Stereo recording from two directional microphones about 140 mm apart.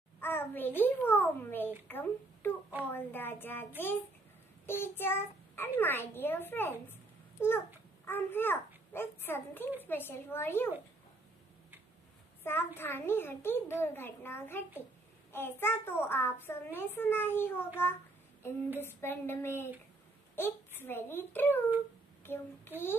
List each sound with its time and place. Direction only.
0.2 s a child's voice: 15° left (ahead or behind)
4.6 s child singing: 15° left (ahead or behind)
5.8 s a child's voice: 15° left (ahead or behind)
12.4 s a child's voice: 15° left (ahead or behind)
18.8 s a child's voice: 15° left (ahead or behind)
22.2 s child singing: 15° left (ahead or behind)